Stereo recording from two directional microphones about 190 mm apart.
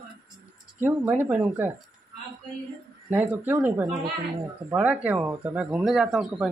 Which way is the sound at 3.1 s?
10° right (ahead or behind).